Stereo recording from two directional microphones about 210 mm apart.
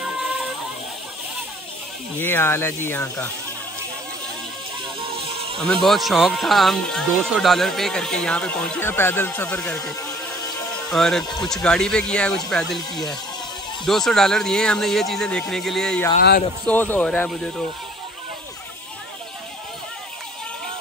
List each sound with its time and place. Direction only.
2.1 s speech: 10° left (ahead or behind)
5.0 s music: 25° right (ahead or behind)
5.6 s speech: centre (ahead or behind)
16.2 s a man's voice: 45° left (ahead or behind)
16.6 s speech: 10° left (ahead or behind)